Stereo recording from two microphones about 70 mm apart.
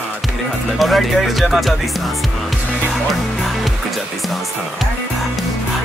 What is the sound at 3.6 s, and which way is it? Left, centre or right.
Music, centre.